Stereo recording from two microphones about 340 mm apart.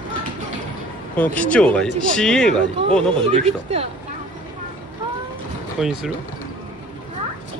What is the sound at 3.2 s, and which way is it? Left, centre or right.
Speech, centre.